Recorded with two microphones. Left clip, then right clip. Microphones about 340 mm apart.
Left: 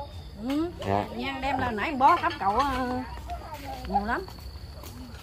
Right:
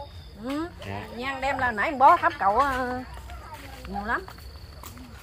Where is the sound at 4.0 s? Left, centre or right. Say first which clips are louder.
Left 1 dB; centre.